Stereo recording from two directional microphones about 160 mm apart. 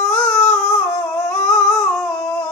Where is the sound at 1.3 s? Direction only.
5° left (ahead or behind).